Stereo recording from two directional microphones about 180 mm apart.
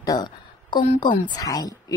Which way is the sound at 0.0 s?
20° left (ahead or behind).